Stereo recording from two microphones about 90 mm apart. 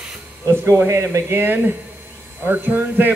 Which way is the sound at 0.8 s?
35° right (ahead or behind).